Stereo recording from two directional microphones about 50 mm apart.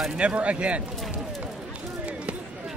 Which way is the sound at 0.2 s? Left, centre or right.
Right.